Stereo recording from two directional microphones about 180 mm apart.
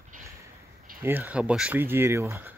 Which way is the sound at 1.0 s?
10° right (ahead or behind).